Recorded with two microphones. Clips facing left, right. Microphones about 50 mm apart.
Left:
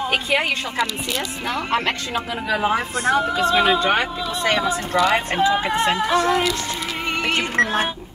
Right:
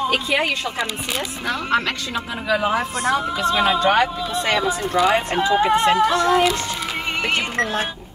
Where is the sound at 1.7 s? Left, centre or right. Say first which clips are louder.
Right 1 dB; left.